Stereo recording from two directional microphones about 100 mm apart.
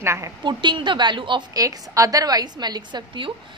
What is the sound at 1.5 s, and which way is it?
A woman's voice, 35° right (ahead or behind).